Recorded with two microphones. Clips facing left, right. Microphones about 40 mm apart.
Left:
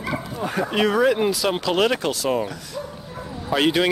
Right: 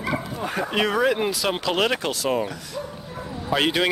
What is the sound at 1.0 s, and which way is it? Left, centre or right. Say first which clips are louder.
Speech: left 2 dB; centre.